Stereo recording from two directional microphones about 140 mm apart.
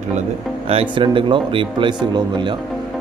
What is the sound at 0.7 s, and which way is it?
Speech, 40° right (ahead or behind).